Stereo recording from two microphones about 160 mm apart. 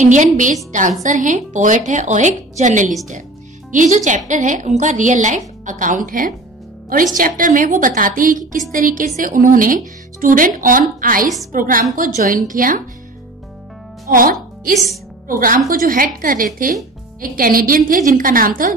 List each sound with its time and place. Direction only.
0.0 s a woman's voice: 50° right (ahead or behind)
14.1 s a woman's voice: 60° right (ahead or behind)